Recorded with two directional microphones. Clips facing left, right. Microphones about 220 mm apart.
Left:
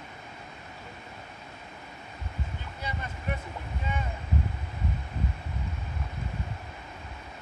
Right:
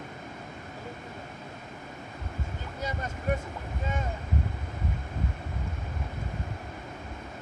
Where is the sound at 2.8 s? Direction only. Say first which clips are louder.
Right 4 dB; 45° right (ahead or behind).